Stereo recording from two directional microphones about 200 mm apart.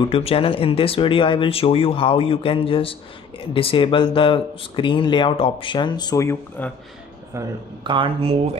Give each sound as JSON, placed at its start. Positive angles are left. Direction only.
{"t": 0.1, "sound": "speech", "side_deg": 30}
{"t": 7.3, "sound": "speech", "side_deg": -25}